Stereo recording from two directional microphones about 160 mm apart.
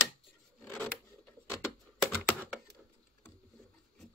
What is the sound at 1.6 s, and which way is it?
Computer keyboard, centre (ahead or behind).